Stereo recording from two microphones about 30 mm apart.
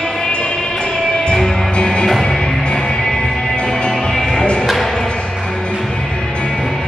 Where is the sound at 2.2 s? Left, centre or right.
Centre.